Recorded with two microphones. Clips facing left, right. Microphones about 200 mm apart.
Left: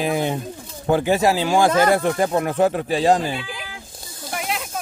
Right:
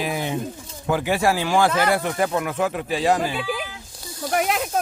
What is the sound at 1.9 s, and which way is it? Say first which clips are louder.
A man's voice: left 3 dB; 30° left (ahead or behind).